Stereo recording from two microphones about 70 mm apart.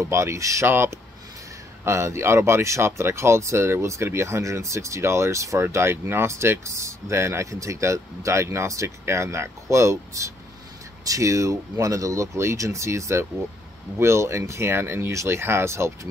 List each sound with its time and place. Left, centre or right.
0.0 s speech: right
0.7 s speech: right